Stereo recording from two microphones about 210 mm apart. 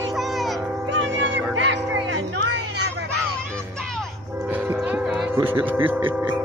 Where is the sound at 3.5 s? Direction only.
Centre (ahead or behind).